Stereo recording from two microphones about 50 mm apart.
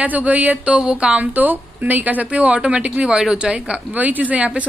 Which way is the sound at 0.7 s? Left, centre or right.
Centre.